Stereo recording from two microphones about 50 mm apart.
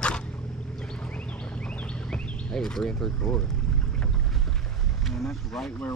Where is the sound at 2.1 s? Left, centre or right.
Centre.